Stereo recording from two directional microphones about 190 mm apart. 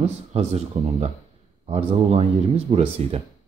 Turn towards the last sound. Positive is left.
turn(degrees=-30)  # may be behind; listen again after turning